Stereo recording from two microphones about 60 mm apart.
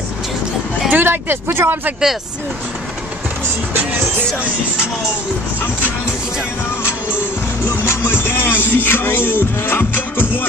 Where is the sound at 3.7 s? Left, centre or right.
Right.